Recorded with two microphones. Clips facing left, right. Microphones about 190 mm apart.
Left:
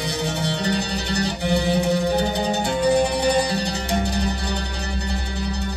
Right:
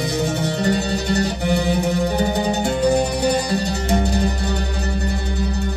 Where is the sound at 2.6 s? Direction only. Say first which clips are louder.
Even; 45° right (ahead or behind).